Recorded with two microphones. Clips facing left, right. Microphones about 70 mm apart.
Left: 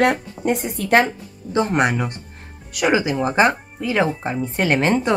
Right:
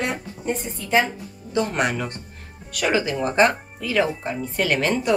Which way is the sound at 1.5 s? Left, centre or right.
Left.